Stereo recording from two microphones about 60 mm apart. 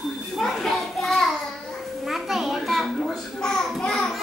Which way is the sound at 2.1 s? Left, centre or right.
Centre.